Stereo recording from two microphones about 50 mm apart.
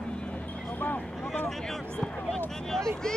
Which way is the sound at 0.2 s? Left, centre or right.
Left.